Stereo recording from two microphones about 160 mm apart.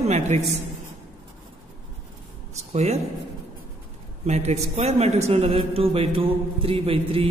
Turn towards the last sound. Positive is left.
turn(degrees=-35)  # may be behind; listen again after turning